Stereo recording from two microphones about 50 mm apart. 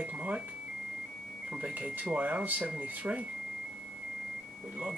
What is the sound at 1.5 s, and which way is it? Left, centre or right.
Speech, right.